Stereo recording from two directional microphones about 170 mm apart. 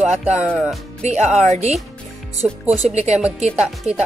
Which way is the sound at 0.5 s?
Centre (ahead or behind).